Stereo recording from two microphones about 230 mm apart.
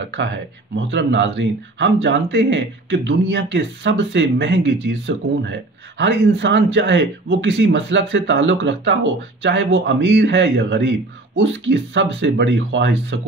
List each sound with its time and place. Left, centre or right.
0.0 s speech: right